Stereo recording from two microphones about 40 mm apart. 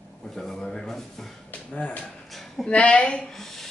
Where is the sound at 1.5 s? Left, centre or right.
Left.